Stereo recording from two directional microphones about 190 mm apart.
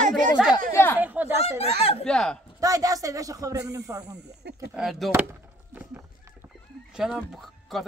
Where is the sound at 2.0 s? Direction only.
5° left (ahead or behind).